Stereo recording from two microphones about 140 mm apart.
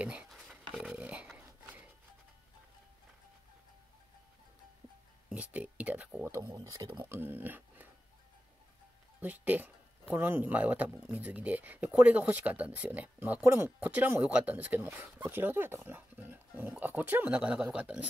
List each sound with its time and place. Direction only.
0.0 s a sound: 10° right (ahead or behind)
5.3 s speech: 10° right (ahead or behind)
6.5 s speech: 25° right (ahead or behind)
9.2 s speech: 10° right (ahead or behind)